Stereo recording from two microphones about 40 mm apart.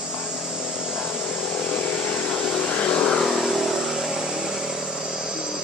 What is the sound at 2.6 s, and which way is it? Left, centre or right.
Vehicle, left.